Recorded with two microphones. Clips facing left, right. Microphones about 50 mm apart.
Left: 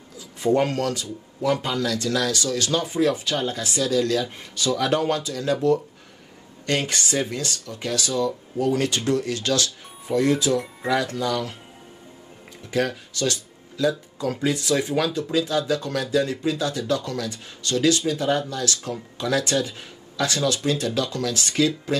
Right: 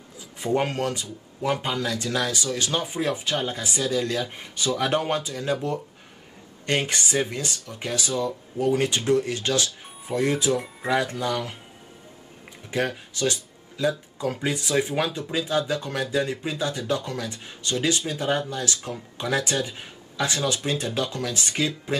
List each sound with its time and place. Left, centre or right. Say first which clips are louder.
0.6 s speech: left 3 dB; right
12.7 s speech: left 2 dB; right